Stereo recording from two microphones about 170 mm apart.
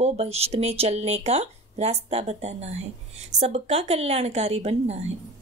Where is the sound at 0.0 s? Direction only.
40° right (ahead or behind).